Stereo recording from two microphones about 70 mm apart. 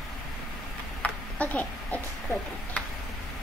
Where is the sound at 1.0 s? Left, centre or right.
Centre.